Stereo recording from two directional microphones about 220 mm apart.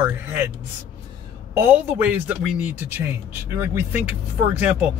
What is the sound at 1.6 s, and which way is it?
Speech, 5° right (ahead or behind).